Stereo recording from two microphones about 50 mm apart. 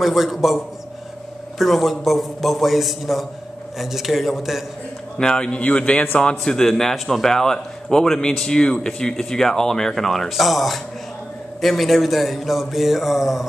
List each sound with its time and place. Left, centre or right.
0.0 s speech: centre
5.1 s a man's voice: centre
6.4 s a man's voice: centre